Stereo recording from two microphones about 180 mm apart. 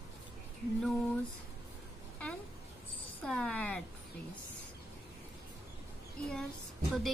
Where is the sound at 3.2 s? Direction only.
5° left (ahead or behind).